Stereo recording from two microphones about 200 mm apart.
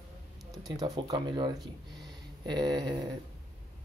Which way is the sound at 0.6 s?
20° right (ahead or behind).